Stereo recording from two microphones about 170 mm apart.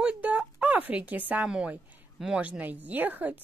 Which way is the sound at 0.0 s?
5° right (ahead or behind).